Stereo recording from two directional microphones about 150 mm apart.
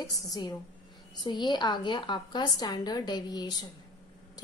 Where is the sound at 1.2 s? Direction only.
30° left (ahead or behind).